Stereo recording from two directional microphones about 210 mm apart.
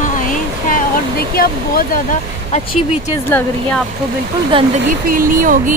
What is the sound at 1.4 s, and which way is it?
Speech, 45° left (ahead or behind).